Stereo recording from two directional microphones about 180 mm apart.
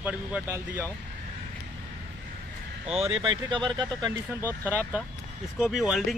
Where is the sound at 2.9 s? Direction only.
30° right (ahead or behind).